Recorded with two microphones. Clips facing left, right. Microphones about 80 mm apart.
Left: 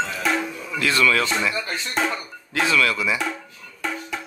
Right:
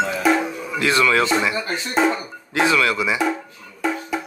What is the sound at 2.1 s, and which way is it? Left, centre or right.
Speech, right.